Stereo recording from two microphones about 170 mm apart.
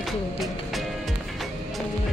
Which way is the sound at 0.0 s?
Centre (ahead or behind).